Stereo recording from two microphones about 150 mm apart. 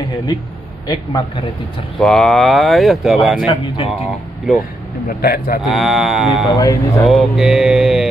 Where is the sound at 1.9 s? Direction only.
Centre (ahead or behind).